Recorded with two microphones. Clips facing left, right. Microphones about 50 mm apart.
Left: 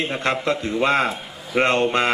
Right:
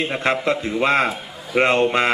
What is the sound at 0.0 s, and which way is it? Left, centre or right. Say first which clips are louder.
A man's voice: right 2 dB; centre.